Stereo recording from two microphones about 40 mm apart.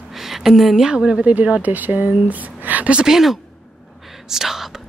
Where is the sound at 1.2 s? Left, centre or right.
Right.